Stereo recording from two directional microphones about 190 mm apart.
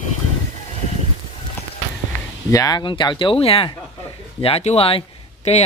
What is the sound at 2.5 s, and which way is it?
Speech, 20° left (ahead or behind).